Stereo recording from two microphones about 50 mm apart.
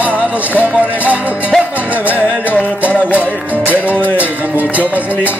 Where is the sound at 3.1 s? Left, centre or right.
Right.